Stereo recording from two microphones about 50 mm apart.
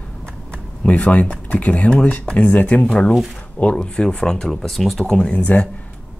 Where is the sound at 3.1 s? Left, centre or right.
Centre.